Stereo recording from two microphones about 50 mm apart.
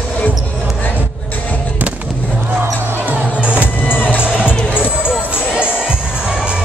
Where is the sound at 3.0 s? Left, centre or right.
Right.